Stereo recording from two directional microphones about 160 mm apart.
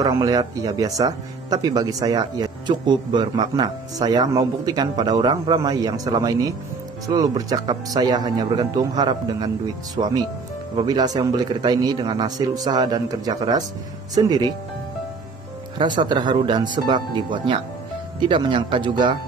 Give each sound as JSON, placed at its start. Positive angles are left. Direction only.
{"t": 0.0, "sound": "speech", "side_deg": -25}
{"t": 16.0, "sound": "speech", "side_deg": -30}